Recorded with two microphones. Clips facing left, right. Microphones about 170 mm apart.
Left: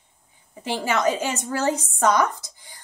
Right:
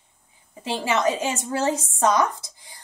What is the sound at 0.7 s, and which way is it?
A woman's voice, 25° right (ahead or behind).